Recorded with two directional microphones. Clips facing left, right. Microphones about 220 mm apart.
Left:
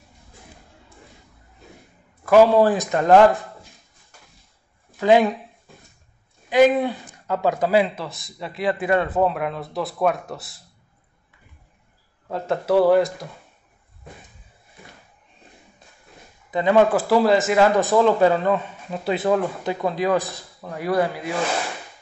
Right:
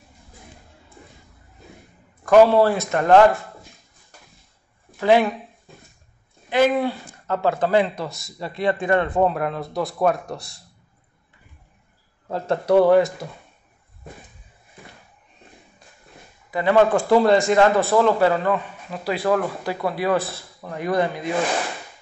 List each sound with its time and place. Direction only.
2.2 s a man's voice: 5° left (ahead or behind)
2.6 s a man's voice: 15° left (ahead or behind)
5.0 s a man's voice: 15° left (ahead or behind)
6.5 s speech: 20° left (ahead or behind)
12.3 s speech: centre (ahead or behind)
16.4 s speech: 20° left (ahead or behind)
16.9 s speech: centre (ahead or behind)
17.7 s a man's voice: 15° left (ahead or behind)